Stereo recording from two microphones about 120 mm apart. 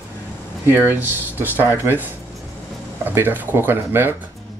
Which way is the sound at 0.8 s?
15° right (ahead or behind).